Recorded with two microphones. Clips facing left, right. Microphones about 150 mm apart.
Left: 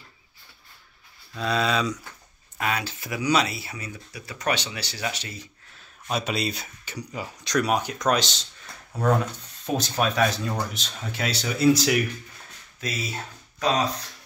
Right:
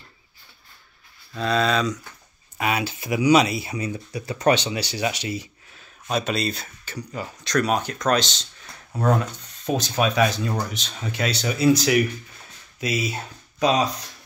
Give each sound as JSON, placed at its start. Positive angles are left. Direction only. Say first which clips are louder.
{"t": 1.4, "sound": "speech", "louder": "right 3 dB", "side_deg": 5}
{"t": 2.5, "sound": "speech", "louder": "right 3 dB", "side_deg": -10}
{"t": 5.8, "sound": "speech", "louder": "right 3 dB", "side_deg": 5}
{"t": 9.8, "sound": "speech", "louder": "right 2 dB", "side_deg": 0}
{"t": 12.8, "sound": "speech", "louder": "right 6 dB", "side_deg": -15}